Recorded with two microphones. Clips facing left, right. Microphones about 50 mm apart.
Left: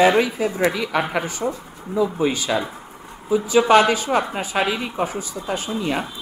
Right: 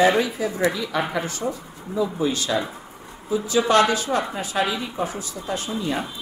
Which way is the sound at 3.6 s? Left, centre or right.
Centre.